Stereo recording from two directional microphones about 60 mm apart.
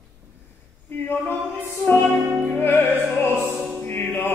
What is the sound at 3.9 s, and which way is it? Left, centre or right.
Music, left.